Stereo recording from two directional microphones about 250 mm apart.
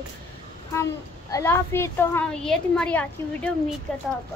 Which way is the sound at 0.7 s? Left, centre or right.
Centre.